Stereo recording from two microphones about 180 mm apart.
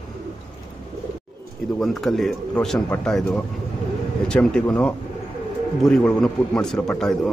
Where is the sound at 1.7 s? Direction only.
Centre (ahead or behind).